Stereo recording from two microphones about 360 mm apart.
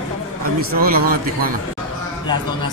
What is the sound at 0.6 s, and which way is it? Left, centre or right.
Speech, right.